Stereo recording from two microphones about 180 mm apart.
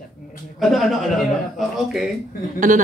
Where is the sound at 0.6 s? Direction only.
Centre (ahead or behind).